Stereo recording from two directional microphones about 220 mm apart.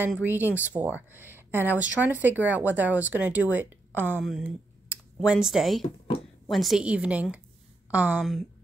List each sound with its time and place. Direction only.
0.0 s speech: 10° right (ahead or behind)
5.8 s speech: 25° left (ahead or behind)
6.5 s a woman's voice: centre (ahead or behind)